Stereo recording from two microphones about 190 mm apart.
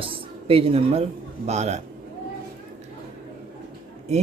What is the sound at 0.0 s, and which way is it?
Speech, 30° right (ahead or behind).